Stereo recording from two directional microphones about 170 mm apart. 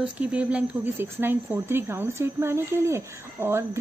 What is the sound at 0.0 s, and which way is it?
Speech, 5° right (ahead or behind).